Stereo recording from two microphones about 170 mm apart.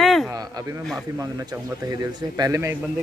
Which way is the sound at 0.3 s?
20° right (ahead or behind).